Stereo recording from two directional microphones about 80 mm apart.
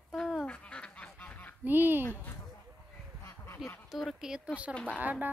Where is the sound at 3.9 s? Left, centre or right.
Centre; by 5.3 s right.